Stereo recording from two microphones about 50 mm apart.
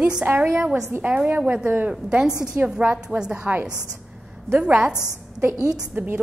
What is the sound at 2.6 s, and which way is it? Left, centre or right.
Speech, right.